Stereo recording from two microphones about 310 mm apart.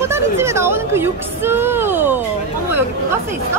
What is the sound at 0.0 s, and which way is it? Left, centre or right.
Speech, centre.